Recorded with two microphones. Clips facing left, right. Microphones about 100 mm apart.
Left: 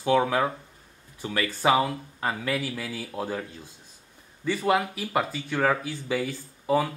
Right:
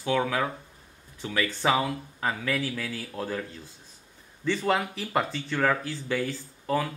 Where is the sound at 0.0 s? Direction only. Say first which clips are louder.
Left 4 dB; 20° left (ahead or behind).